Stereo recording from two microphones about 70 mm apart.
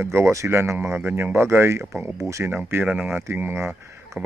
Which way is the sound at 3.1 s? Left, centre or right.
Right.